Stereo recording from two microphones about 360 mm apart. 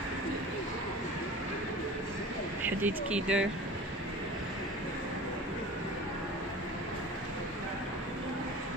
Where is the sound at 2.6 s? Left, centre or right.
Centre.